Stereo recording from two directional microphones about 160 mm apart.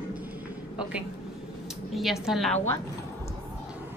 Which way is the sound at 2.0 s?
Centre (ahead or behind).